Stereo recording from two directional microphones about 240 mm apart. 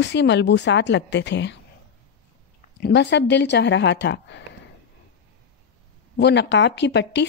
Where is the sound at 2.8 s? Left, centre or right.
Left.